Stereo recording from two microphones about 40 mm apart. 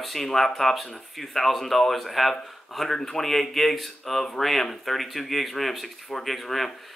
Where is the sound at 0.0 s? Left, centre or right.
Centre.